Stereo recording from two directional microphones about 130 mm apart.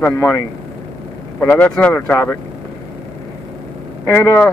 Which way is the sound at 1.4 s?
15° left (ahead or behind).